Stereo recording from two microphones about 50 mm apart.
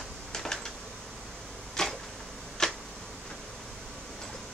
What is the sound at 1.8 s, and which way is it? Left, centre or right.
Arrow, centre.